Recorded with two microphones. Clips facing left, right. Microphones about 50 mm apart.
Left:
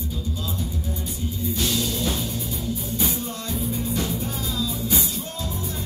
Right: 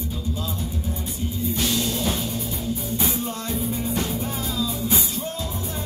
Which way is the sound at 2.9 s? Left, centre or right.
Right.